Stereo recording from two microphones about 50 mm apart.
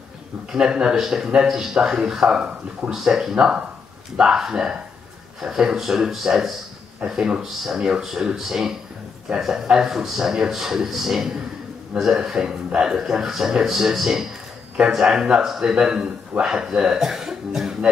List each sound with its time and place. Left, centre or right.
0.5 s a man's voice: centre